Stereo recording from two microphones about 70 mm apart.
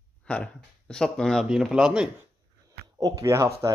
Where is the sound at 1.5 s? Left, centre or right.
Centre.